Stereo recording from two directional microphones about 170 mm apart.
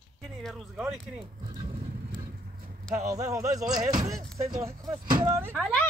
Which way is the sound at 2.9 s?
20° right (ahead or behind).